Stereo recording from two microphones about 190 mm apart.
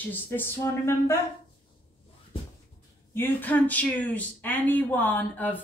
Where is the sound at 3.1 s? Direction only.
10° left (ahead or behind).